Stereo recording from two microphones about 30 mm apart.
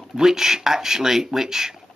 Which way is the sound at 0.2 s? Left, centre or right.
Centre.